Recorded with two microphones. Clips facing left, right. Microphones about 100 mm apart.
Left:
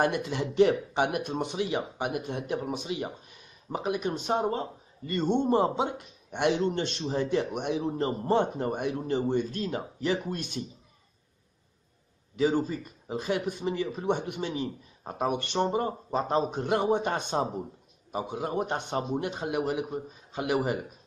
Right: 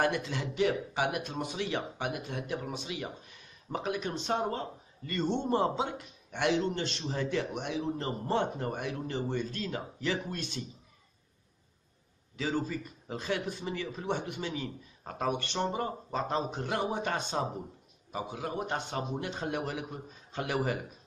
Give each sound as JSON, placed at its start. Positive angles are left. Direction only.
{"t": 0.0, "sound": "speech", "side_deg": 20}
{"t": 12.4, "sound": "a man's voice", "side_deg": 20}